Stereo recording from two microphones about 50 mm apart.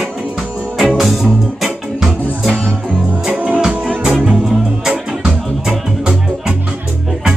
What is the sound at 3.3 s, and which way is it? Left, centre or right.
Music, right.